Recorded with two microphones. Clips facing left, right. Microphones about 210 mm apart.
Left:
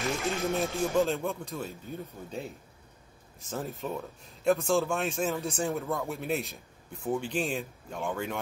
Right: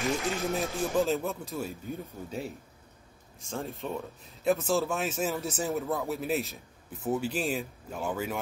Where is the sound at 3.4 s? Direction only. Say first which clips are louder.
Even; centre (ahead or behind).